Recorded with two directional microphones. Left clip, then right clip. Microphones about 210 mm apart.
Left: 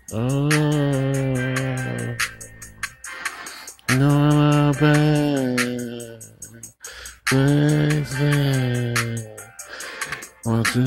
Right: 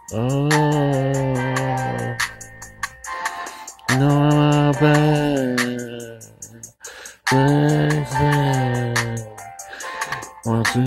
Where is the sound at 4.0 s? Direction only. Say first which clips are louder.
Right 2 dB; 20° left (ahead or behind).